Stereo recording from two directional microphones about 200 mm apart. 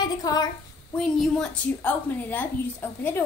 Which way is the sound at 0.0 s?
20° left (ahead or behind).